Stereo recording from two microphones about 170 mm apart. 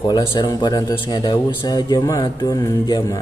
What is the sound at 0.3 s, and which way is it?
A man's voice, 25° left (ahead or behind).